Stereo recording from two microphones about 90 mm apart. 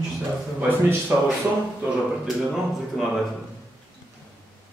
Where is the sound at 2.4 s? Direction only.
Centre (ahead or behind).